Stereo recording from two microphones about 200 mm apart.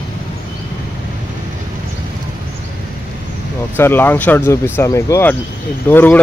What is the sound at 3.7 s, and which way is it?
Speech, 10° left (ahead or behind).